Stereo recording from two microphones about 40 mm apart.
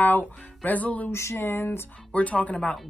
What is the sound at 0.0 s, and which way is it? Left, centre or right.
Music, left.